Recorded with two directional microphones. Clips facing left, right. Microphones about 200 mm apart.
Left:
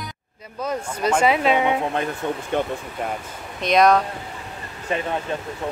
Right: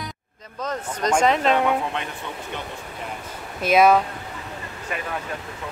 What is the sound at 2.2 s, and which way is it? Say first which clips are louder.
Speech: left 9 dB; 45° left (ahead or behind).